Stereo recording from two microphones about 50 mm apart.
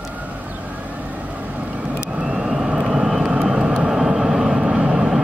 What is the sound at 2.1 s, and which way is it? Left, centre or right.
Vehicle, centre.